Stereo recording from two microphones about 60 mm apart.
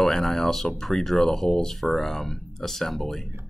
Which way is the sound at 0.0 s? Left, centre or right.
Centre.